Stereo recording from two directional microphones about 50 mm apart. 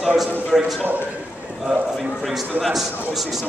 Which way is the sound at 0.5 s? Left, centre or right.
Centre.